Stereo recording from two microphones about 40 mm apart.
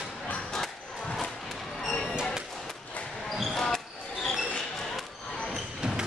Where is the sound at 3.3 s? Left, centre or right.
Centre.